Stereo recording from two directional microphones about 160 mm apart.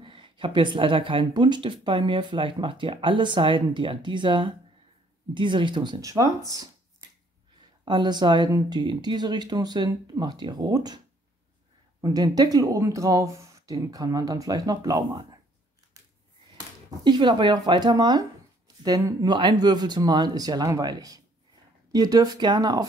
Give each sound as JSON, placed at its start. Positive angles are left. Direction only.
{"t": 0.0, "sound": "speech", "side_deg": -30}
{"t": 7.8, "sound": "speech", "side_deg": -30}
{"t": 12.0, "sound": "speech", "side_deg": -25}
{"t": 17.0, "sound": "speech", "side_deg": -30}